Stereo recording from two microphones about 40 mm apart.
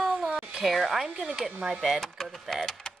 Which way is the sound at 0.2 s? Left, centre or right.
Centre.